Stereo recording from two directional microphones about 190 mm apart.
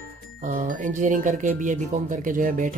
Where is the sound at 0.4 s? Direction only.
40° right (ahead or behind).